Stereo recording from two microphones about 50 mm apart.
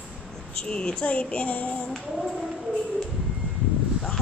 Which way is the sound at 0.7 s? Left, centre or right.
Left.